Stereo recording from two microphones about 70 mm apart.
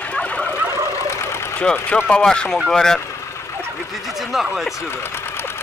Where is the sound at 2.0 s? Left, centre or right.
Centre.